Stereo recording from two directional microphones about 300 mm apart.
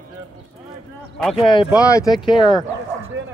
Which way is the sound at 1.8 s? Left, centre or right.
Centre.